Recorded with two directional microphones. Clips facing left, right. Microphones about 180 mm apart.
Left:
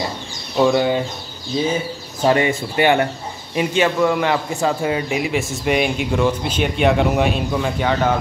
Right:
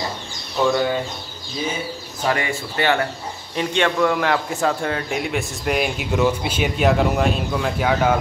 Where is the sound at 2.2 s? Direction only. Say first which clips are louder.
Left 6 dB; 25° left (ahead or behind).